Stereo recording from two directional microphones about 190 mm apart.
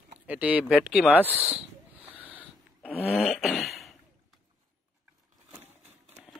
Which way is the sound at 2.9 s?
30° left (ahead or behind).